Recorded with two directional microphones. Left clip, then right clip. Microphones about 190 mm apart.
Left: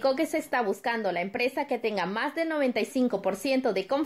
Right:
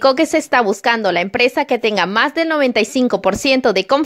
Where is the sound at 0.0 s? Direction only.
50° right (ahead or behind).